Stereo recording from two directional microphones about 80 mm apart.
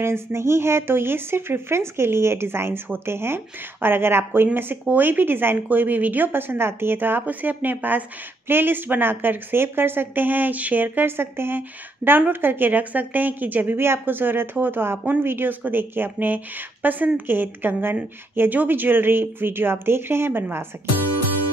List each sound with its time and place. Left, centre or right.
0.0 s a woman's voice: right